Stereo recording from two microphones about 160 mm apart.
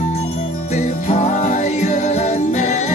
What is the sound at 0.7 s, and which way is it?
Music, 50° left (ahead or behind).